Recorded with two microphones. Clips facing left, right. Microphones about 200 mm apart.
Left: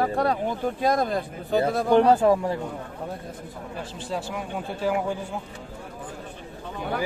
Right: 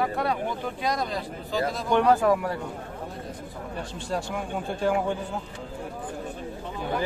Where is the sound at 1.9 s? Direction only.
30° left (ahead or behind).